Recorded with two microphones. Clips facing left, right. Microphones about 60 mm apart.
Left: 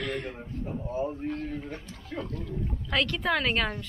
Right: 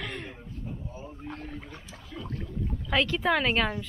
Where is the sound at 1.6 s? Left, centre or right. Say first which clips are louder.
Left 5 dB; left.